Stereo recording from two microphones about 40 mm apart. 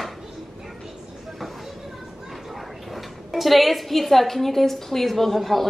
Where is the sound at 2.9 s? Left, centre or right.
Centre.